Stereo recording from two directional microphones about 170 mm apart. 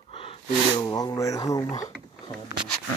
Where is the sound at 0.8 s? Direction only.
20° left (ahead or behind).